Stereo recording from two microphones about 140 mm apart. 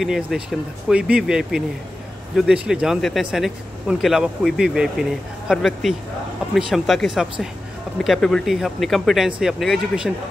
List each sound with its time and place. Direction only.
0.0 s speech: centre (ahead or behind)